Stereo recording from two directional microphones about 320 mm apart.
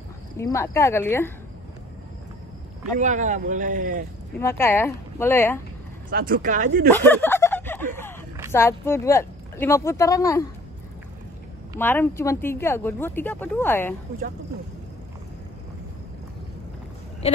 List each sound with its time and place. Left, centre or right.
0.4 s speech: centre
3.0 s speech: right
4.4 s speech: centre
6.0 s speech: right
6.9 s a sound: centre
8.5 s speech: centre
11.8 s speech: centre